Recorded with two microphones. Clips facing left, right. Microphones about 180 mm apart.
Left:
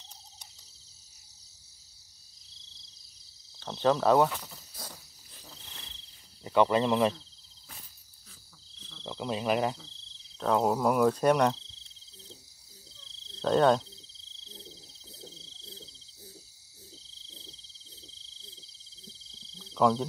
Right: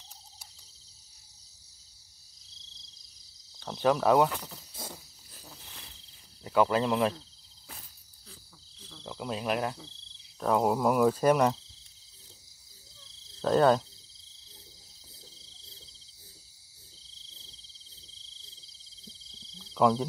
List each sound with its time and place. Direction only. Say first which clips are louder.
3.5 s speech: even; 10° right (ahead or behind)
4.4 s snake: right 3 dB; 20° right (ahead or behind)
6.4 s speech: left 1 dB; 5° right (ahead or behind)
8.8 s cricket: left 2 dB; 10° right (ahead or behind)
9.8 s cricket: right 4 dB; 15° right (ahead or behind)
10.4 s speech: even; 5° right (ahead or behind)
13.4 s speech: even; 5° right (ahead or behind)
15.1 s a sound: left 10 dB; 35° left (ahead or behind)
19.6 s a sound: even; centre (ahead or behind)